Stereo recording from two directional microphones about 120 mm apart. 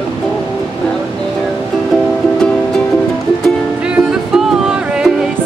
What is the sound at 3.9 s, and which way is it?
Music, 5° right (ahead or behind).